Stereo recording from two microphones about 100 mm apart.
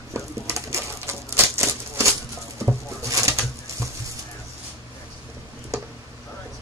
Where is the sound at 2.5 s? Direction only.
30° right (ahead or behind).